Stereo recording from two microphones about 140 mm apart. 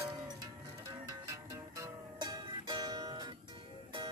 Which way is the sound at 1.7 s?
25° right (ahead or behind).